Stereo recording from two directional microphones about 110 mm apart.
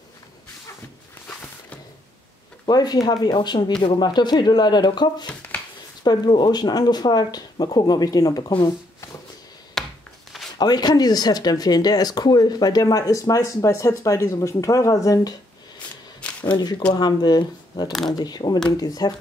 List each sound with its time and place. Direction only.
2.6 s speech: 40° left (ahead or behind)
9.8 s chopping: 5° left (ahead or behind)
10.6 s speech: 40° left (ahead or behind)
16.2 s shuffling cards: 10° left (ahead or behind)
16.9 s speech: 40° left (ahead or behind)